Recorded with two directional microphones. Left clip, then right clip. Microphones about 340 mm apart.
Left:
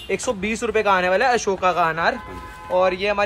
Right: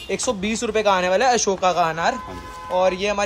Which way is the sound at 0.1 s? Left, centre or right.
Centre.